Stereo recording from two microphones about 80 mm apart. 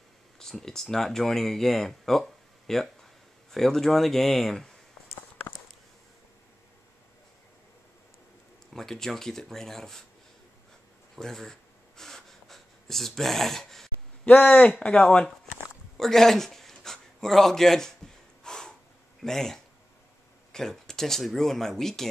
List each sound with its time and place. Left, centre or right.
0.4 s speech: centre
8.7 s speech: centre
11.1 s speech: centre
12.0 s a sound: centre
14.2 s a man's voice: centre
18.4 s snort: centre
19.2 s speech: centre